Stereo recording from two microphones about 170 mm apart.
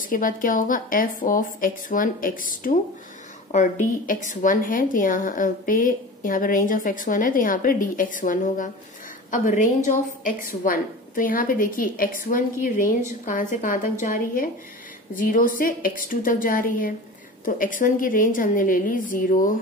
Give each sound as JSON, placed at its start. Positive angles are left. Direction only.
{"t": 0.0, "sound": "a woman's voice", "side_deg": 55}